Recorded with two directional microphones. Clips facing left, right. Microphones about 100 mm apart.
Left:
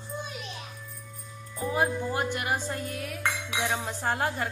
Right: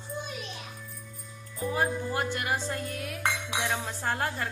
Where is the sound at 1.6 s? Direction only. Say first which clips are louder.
Left 2 dB; 20° left (ahead or behind).